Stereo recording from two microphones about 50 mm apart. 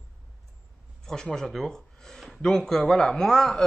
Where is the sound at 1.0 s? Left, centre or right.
Centre.